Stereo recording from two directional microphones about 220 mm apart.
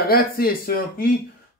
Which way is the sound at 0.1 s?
40° left (ahead or behind).